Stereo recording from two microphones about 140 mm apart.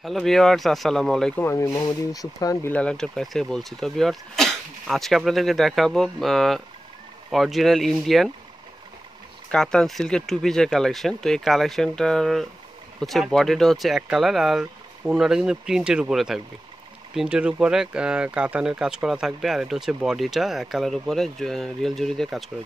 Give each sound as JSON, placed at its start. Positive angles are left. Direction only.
{"t": 0.0, "sound": "speech", "side_deg": 0}
{"t": 1.4, "sound": "speech", "side_deg": 20}
{"t": 2.7, "sound": "speech", "side_deg": 5}
{"t": 9.5, "sound": "speech", "side_deg": 5}